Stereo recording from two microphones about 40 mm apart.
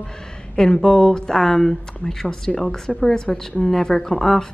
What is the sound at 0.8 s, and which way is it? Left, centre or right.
Speech, centre.